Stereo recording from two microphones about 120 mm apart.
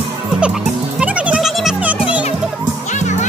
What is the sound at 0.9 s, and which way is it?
Music, 10° right (ahead or behind).